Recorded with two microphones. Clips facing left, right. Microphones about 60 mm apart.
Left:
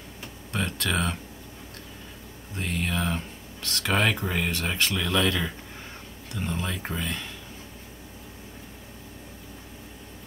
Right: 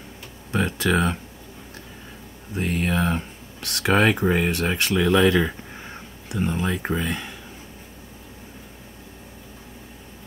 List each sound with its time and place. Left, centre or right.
0.5 s speech: centre
2.5 s speech: centre